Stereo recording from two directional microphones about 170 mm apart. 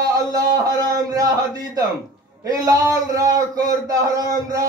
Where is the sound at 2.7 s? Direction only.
20° right (ahead or behind).